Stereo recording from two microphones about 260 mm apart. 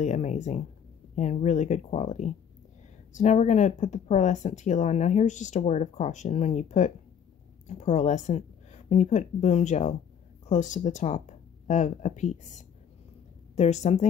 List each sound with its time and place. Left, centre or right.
0.0 s speech: left